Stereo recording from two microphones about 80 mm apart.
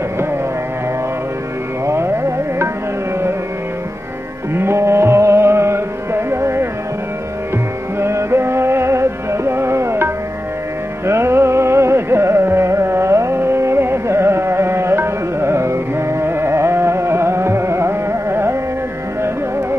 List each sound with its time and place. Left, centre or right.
1.9 s music: right
4.6 s music: right
8.0 s music: right